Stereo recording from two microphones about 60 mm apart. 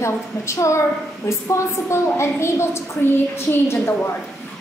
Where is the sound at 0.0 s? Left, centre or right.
Left.